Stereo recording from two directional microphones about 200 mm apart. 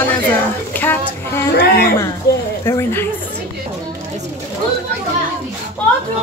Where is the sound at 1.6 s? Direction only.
50° left (ahead or behind).